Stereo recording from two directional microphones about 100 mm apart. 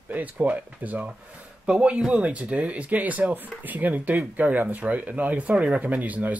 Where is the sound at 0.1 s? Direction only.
15° right (ahead or behind).